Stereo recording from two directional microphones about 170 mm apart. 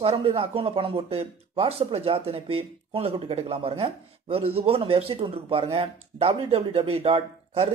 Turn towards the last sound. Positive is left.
turn(degrees=-35)  # may be behind; listen again after turning